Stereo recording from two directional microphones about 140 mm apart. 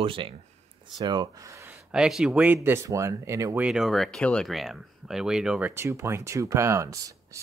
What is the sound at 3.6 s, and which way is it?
Speech, 5° right (ahead or behind).